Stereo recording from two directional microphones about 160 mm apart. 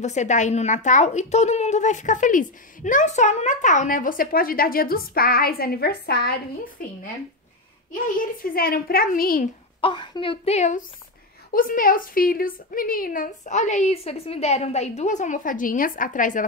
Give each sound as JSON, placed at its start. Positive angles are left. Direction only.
{"t": 0.0, "sound": "a woman's voice", "side_deg": 50}
{"t": 6.8, "sound": "a woman's voice", "side_deg": 65}
{"t": 9.8, "sound": "a woman's voice", "side_deg": 30}
{"t": 11.5, "sound": "a woman's voice", "side_deg": 60}